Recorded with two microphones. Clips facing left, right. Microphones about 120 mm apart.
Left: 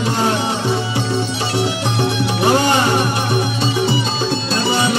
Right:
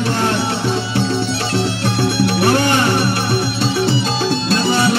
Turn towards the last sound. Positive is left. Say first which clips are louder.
# even
turn(degrees=15)  # may be behind; listen again after turning